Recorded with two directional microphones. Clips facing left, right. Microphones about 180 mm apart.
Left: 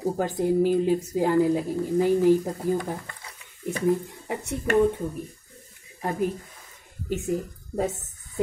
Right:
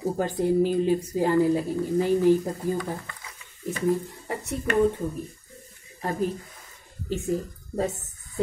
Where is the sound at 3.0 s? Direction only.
40° left (ahead or behind).